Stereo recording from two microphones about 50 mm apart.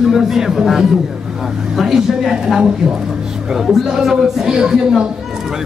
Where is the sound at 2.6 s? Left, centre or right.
Centre.